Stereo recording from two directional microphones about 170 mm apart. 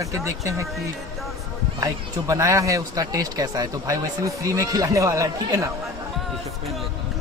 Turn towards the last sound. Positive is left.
turn(degrees=-20)  # may be behind; listen again after turning